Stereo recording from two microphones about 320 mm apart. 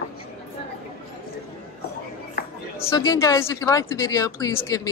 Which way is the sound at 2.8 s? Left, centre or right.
Centre.